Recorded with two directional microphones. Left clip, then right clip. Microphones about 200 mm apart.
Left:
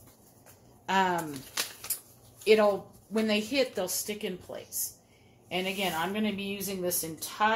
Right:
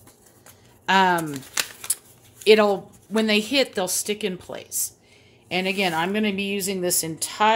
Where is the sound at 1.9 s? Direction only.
45° right (ahead or behind).